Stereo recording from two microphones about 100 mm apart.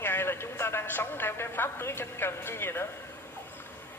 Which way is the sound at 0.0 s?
25° left (ahead or behind).